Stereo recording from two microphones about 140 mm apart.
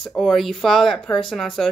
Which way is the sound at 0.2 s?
Centre (ahead or behind).